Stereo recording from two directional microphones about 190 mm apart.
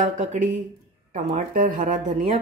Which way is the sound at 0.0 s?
40° right (ahead or behind).